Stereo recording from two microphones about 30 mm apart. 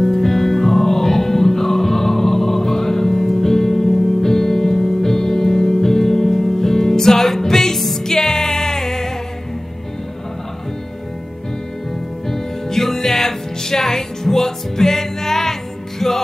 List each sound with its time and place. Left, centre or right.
0.0 s music: centre
12.3 s music: centre